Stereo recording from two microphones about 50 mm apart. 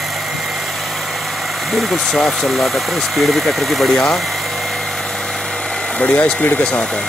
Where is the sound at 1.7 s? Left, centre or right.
Centre.